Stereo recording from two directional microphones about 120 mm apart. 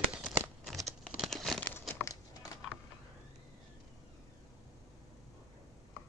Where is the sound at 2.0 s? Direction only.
30° left (ahead or behind).